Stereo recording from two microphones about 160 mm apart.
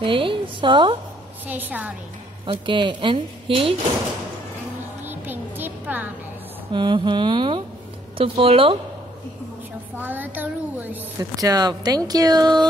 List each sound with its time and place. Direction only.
0.0 s speech: 30° right (ahead or behind)
1.5 s child singing: 10° right (ahead or behind)
2.4 s speech: 30° right (ahead or behind)
5.0 s music: 10° right (ahead or behind)
6.7 s speech: 30° right (ahead or behind)
9.9 s child singing: 10° right (ahead or behind)
11.1 s speech: 20° right (ahead or behind)